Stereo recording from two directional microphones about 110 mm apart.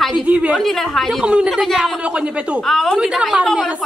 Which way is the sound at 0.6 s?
Centre (ahead or behind).